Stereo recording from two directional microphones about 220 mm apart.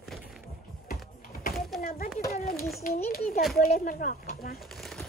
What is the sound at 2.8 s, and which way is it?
Speech, 40° left (ahead or behind).